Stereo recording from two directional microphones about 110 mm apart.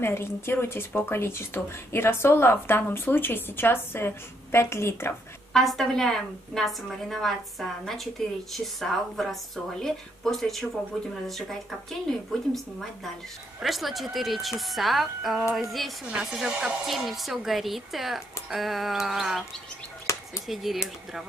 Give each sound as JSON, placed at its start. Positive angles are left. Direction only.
{"t": 0.0, "sound": "speech", "side_deg": 25}
{"t": 5.5, "sound": "a woman's voice", "side_deg": 0}
{"t": 20.1, "sound": "a sound", "side_deg": 25}
{"t": 20.4, "sound": "a woman's voice", "side_deg": 0}